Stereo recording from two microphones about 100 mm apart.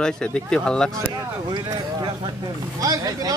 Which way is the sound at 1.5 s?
45° right (ahead or behind).